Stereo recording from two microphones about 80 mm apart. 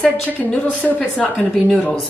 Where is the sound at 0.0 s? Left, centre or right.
Centre.